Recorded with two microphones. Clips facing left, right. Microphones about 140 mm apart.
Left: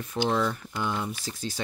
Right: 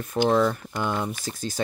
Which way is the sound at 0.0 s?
45° right (ahead or behind).